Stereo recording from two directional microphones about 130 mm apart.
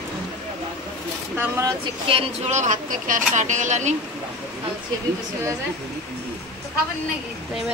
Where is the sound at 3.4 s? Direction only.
70° right (ahead or behind).